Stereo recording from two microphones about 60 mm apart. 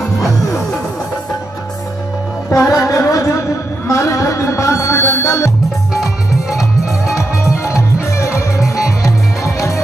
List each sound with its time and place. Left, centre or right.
2.5 s music: left
6.5 s music: centre
7.2 s music: left